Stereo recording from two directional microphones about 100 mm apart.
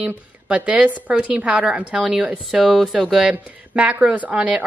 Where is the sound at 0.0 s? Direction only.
10° right (ahead or behind).